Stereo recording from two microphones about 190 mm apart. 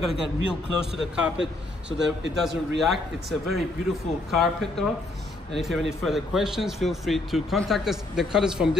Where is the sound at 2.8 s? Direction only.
Centre (ahead or behind).